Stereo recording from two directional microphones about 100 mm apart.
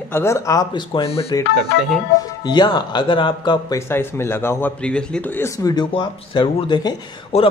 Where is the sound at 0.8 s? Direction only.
65° left (ahead or behind).